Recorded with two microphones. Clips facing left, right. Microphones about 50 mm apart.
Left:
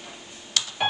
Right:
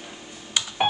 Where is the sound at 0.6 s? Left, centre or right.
Centre.